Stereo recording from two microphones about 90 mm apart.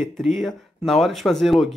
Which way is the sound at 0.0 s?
Centre (ahead or behind).